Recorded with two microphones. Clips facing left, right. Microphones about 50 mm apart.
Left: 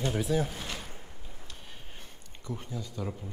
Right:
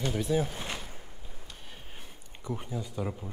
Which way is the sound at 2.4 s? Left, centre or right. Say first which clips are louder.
Right 3 dB; centre.